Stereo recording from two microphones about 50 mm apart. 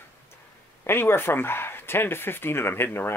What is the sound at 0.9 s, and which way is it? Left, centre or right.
Speech, left.